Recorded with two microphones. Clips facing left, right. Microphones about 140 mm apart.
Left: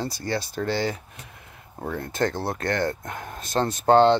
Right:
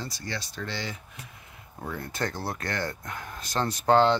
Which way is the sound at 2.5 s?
50° left (ahead or behind).